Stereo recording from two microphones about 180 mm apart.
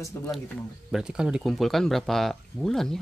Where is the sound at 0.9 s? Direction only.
5° right (ahead or behind).